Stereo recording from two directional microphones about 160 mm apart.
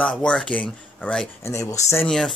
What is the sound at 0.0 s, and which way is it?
Speech, 5° left (ahead or behind).